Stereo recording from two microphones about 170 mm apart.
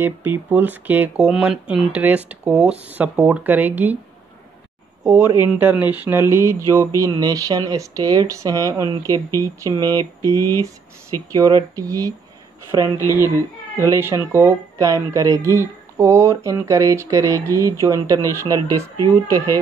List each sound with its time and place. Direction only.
0.0 s speech: 10° right (ahead or behind)
5.1 s speech: 15° right (ahead or behind)
11.3 s speech: 20° right (ahead or behind)
12.8 s speech: 20° left (ahead or behind)
13.7 s speech: 15° right (ahead or behind)